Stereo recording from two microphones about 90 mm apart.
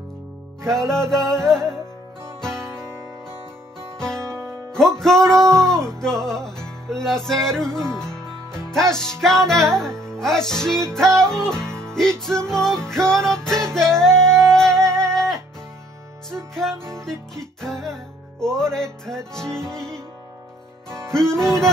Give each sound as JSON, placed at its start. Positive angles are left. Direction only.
{"t": 0.7, "sound": "music", "side_deg": 5}
{"t": 4.2, "sound": "music", "side_deg": -35}
{"t": 4.9, "sound": "music", "side_deg": 5}
{"t": 5.4, "sound": "music", "side_deg": -35}
{"t": 5.7, "sound": "music", "side_deg": 5}
{"t": 21.1, "sound": "music", "side_deg": 5}